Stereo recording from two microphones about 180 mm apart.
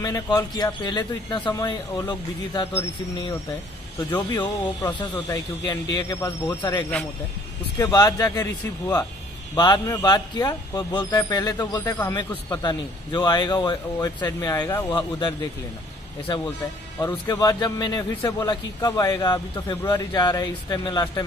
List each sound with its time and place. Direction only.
0.0 s a man's voice: 20° left (ahead or behind)
4.8 s a man's voice: 15° left (ahead or behind)
17.0 s a man's voice: 15° left (ahead or behind)